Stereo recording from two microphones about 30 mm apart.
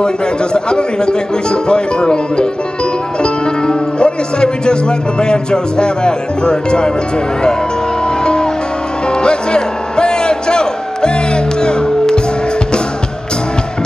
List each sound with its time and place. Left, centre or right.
0.0 s speech: left
8.2 s music: left